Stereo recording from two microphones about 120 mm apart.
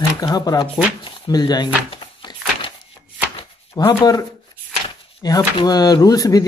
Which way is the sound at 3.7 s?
30° left (ahead or behind).